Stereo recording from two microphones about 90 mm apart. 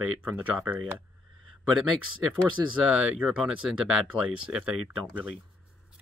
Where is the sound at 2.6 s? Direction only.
20° right (ahead or behind).